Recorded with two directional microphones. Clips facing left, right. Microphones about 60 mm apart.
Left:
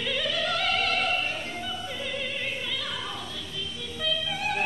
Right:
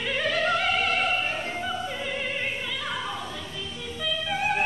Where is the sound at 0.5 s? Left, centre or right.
Centre.